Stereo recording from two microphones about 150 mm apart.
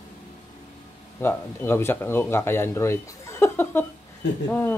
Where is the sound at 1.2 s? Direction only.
15° left (ahead or behind).